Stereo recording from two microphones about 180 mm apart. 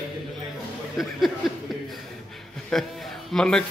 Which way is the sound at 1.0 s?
Centre (ahead or behind).